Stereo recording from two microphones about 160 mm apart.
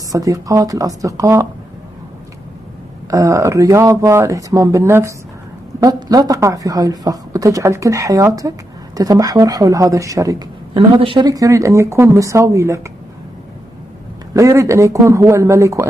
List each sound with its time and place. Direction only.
0.1 s speech: 20° right (ahead or behind)
3.1 s speech: 20° right (ahead or behind)
14.3 s speech: 20° right (ahead or behind)